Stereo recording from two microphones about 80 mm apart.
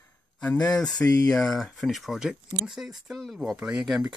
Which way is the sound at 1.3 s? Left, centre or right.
Centre.